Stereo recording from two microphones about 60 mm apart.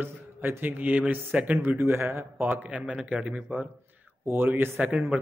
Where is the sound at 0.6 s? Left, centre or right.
Right.